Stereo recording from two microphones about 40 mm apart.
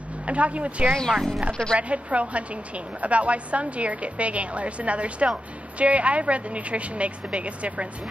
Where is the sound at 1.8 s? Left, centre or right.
Right.